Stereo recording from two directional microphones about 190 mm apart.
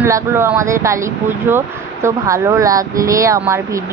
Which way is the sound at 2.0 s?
15° right (ahead or behind).